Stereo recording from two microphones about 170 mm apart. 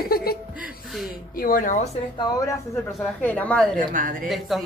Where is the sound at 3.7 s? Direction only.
55° right (ahead or behind).